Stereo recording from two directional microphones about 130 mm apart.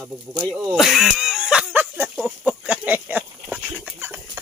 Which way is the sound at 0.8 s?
Centre (ahead or behind).